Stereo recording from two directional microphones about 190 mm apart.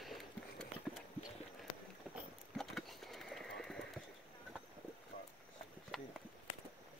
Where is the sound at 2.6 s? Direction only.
Centre (ahead or behind).